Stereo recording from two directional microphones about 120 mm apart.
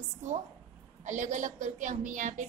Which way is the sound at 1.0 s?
90° right.